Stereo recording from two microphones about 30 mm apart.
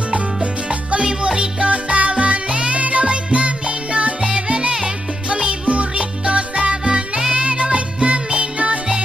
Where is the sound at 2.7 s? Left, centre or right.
Right.